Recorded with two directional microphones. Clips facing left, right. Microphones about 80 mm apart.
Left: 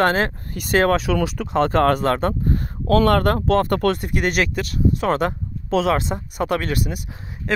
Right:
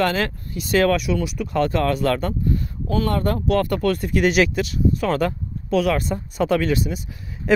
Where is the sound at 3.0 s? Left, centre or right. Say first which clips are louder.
Left 4 dB; left.